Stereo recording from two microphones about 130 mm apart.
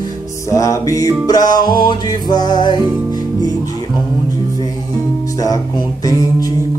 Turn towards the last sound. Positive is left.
turn(degrees=30)  # may be behind; listen again after turning